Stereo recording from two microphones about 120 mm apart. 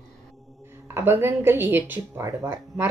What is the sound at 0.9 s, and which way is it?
A woman's voice, 20° right (ahead or behind).